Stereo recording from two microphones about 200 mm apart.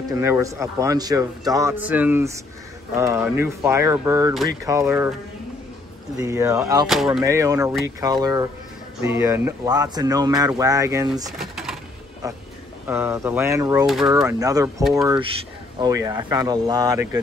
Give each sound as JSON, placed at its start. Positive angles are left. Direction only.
{"t": 0.1, "sound": "speech", "side_deg": -15}
{"t": 6.1, "sound": "speech", "side_deg": -15}
{"t": 6.9, "sound": "speech", "side_deg": 0}
{"t": 7.2, "sound": "speech", "side_deg": -15}
{"t": 11.3, "sound": "a sound", "side_deg": 0}
{"t": 12.8, "sound": "speech", "side_deg": -10}